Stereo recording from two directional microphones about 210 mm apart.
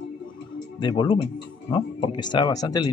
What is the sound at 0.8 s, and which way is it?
Speech, 25° left (ahead or behind).